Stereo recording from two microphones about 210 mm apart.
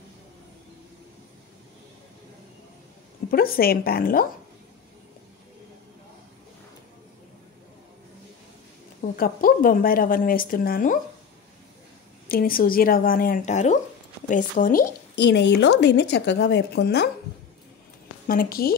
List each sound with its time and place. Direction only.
3.3 s a woman's voice: 45° left (ahead or behind)
9.1 s a woman's voice: 45° left (ahead or behind)
12.3 s a woman's voice: 45° left (ahead or behind)
18.2 s speech: 45° left (ahead or behind)